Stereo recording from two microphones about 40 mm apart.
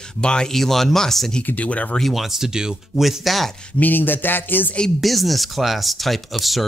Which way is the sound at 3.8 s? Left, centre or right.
Left.